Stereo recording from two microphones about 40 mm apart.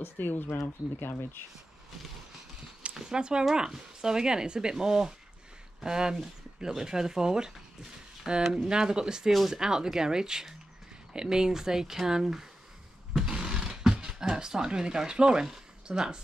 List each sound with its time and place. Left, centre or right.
0.2 s speech: left
2.9 s speech: centre
13.1 s a sound: centre
15.9 s speech: right